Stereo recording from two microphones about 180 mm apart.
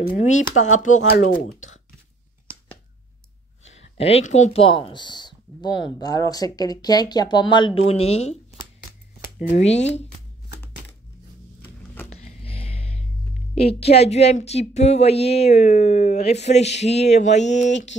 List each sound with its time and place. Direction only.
0.0 s speech: 45° left (ahead or behind)
3.6 s speech: 35° left (ahead or behind)
9.5 s speech: 40° left (ahead or behind)
12.1 s music: 35° left (ahead or behind)
13.6 s speech: 35° left (ahead or behind)